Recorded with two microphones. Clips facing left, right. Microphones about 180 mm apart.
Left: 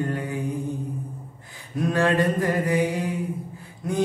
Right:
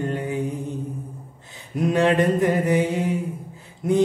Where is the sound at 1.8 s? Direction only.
20° right (ahead or behind).